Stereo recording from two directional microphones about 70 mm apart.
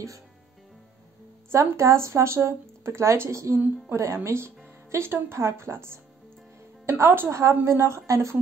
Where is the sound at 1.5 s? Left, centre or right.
Right.